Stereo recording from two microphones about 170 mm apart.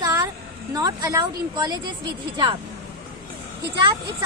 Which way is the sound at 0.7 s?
20° right (ahead or behind).